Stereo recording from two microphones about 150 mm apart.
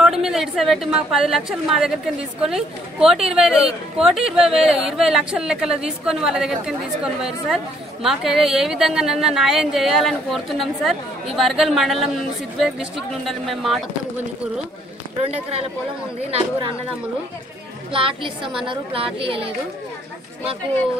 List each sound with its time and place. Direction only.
0.0 s a woman's voice: centre (ahead or behind)
17.9 s speech: 35° right (ahead or behind)